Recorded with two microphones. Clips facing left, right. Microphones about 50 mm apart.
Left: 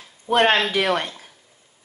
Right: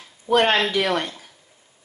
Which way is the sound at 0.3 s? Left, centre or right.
Left.